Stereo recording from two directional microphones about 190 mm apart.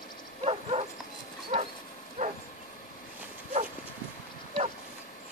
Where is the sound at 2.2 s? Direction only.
40° right (ahead or behind).